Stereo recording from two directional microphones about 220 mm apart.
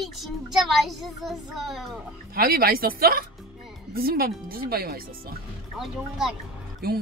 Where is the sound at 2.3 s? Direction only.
45° right (ahead or behind).